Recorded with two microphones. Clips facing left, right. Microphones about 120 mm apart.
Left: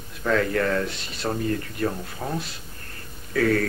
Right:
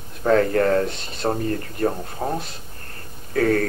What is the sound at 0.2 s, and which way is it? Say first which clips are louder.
Speech: right 5 dB; 40° right (ahead or behind).